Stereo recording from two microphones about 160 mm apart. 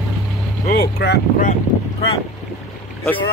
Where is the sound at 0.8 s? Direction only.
85° left.